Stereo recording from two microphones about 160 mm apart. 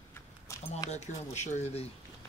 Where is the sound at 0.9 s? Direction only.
45° left (ahead or behind).